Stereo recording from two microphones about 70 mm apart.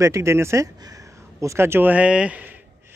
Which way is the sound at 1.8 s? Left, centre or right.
Right.